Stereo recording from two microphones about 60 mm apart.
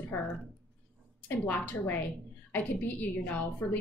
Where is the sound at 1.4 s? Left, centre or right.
Left.